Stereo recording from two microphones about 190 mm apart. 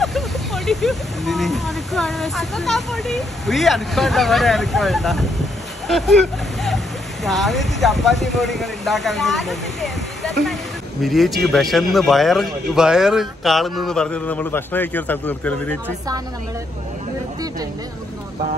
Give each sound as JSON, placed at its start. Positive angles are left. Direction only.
{"t": 0.0, "sound": "speech", "side_deg": 0}
{"t": 7.2, "sound": "speech", "side_deg": 0}